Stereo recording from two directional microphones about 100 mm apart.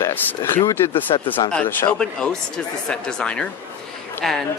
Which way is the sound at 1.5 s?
10° left (ahead or behind).